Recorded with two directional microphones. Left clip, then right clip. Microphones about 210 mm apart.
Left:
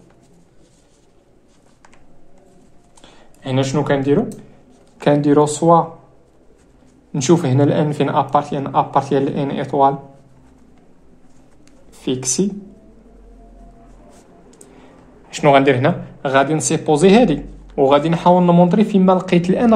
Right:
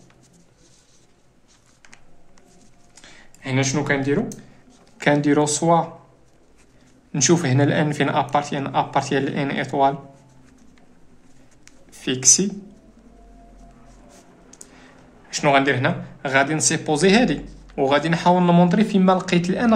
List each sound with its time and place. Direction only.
3.4 s speech: 15° left (ahead or behind)
7.1 s speech: centre (ahead or behind)
11.9 s speech: 5° left (ahead or behind)
15.2 s speech: 15° left (ahead or behind)